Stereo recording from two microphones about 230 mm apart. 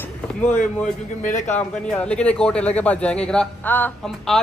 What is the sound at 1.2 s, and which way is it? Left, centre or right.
Speech, left.